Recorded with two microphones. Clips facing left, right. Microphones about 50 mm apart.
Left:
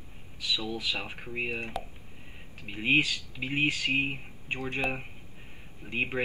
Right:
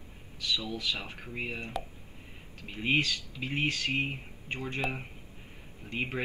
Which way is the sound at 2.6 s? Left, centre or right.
Centre.